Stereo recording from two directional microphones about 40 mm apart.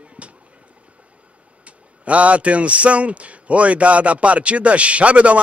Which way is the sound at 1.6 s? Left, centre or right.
Right.